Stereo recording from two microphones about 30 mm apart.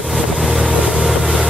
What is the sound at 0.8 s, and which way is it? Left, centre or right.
Vehicle, right.